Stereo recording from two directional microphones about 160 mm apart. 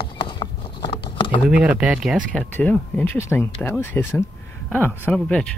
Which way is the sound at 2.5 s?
10° left (ahead or behind).